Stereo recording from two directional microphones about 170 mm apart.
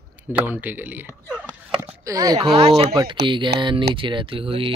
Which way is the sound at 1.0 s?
10° left (ahead or behind).